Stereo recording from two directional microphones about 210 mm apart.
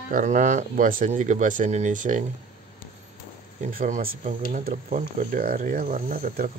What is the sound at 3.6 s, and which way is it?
Speech, 40° right (ahead or behind).